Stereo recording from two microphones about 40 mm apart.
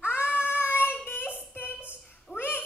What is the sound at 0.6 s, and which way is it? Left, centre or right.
Child singing, left.